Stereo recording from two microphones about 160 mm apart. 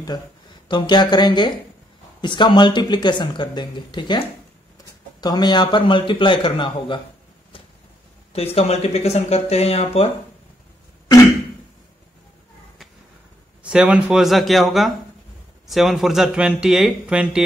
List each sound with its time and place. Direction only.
0.7 s speech: 30° left (ahead or behind)
5.2 s a man's voice: 25° left (ahead or behind)
8.3 s a man's voice: 40° left (ahead or behind)
13.6 s speech: 5° right (ahead or behind)